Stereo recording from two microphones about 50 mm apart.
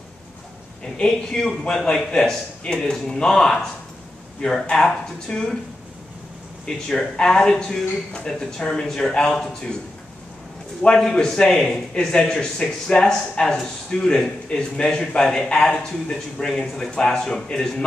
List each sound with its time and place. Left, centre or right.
0.9 s a man's voice: centre
6.7 s a man's voice: centre
11.0 s a man's voice: centre
16.3 s a man's voice: centre